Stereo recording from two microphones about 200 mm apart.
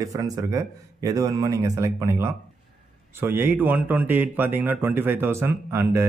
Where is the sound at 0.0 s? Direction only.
15° right (ahead or behind).